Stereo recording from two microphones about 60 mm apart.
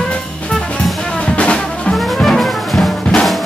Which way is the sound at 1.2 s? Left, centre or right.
Centre.